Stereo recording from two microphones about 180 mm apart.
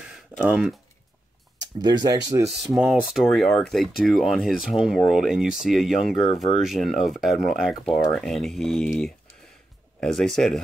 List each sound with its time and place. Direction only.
0.4 s speech: 5° right (ahead or behind)
1.6 s speech: 25° right (ahead or behind)
2.6 s speech: 5° right (ahead or behind)
6.2 s speech: 30° left (ahead or behind)
6.6 s speech: centre (ahead or behind)